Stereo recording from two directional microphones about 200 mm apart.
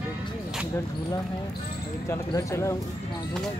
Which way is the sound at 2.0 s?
15° left (ahead or behind).